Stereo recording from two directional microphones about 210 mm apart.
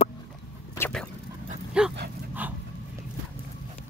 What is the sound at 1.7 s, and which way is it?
Dog, 5° right (ahead or behind).